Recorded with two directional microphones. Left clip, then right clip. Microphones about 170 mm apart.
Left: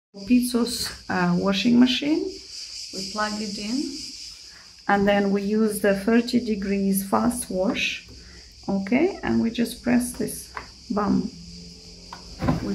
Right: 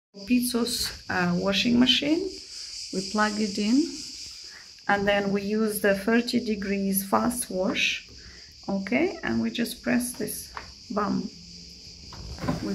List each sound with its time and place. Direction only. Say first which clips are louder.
0.3 s speech: left 3 dB; centre (ahead or behind)
2.9 s speech: right 2 dB; 55° right (ahead or behind)
4.8 s speech: left 3 dB; 5° left (ahead or behind)